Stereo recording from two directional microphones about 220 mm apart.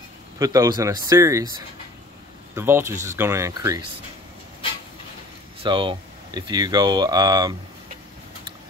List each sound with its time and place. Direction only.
0.4 s speech: 15° right (ahead or behind)
2.5 s speech: 10° right (ahead or behind)
5.6 s speech: 20° right (ahead or behind)